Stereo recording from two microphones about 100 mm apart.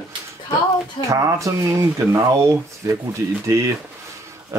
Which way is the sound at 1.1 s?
35° right (ahead or behind).